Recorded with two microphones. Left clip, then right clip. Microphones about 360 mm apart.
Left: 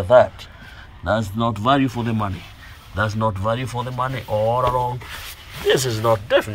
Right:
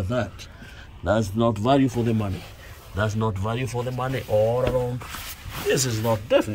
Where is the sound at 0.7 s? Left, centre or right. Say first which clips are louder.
Left 2 dB; centre.